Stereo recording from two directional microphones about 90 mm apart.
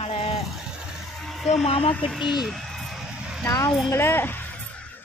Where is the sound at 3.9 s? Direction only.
25° left (ahead or behind).